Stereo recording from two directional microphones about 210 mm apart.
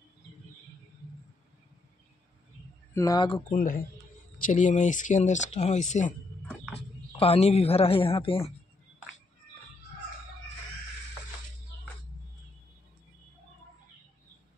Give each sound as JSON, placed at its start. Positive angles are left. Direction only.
{"t": 2.9, "sound": "speech", "side_deg": 15}
{"t": 3.5, "sound": "speech", "side_deg": 45}
{"t": 7.2, "sound": "speech", "side_deg": 30}